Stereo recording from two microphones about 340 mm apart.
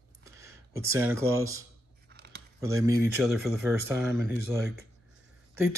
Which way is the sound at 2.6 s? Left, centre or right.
Centre.